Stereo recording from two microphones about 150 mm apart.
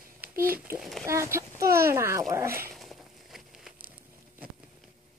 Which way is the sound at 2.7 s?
Centre (ahead or behind).